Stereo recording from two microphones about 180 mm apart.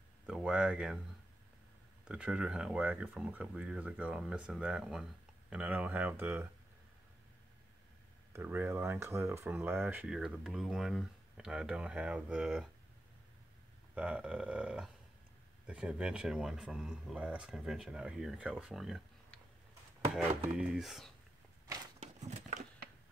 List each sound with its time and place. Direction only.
0.3 s speech: 5° right (ahead or behind)
2.0 s speech: 5° right (ahead or behind)
8.3 s speech: 10° right (ahead or behind)
13.9 s speech: 5° right (ahead or behind)
22.0 s crumpling: 40° right (ahead or behind)